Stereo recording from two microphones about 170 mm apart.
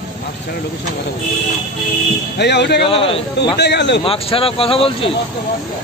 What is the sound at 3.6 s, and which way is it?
Speech, 85° left.